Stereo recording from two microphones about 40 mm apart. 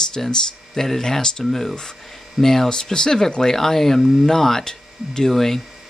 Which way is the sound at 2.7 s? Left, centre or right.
Centre.